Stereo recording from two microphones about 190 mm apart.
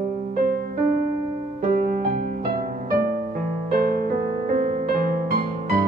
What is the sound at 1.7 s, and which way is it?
Music, 50° right (ahead or behind).